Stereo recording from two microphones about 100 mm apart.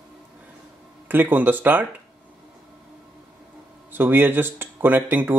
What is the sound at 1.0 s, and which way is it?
Speech, 20° right (ahead or behind).